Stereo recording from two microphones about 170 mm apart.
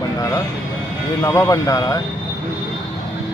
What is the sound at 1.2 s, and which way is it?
Speech, 20° left (ahead or behind).